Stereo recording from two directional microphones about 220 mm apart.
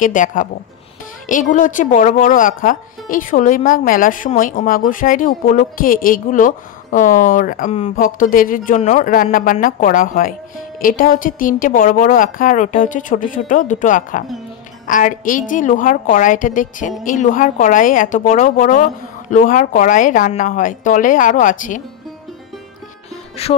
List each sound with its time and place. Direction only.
0.0 s speech: 35° left (ahead or behind)
23.4 s music: 30° left (ahead or behind)